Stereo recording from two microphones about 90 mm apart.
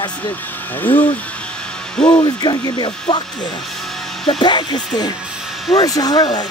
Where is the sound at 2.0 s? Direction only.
10° left (ahead or behind).